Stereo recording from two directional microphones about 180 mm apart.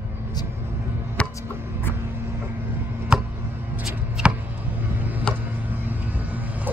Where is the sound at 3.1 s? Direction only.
5° right (ahead or behind).